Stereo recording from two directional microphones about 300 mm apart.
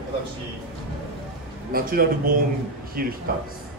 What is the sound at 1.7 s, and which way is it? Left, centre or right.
A man's voice, right.